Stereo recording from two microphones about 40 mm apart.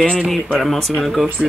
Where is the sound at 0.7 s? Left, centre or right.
Centre.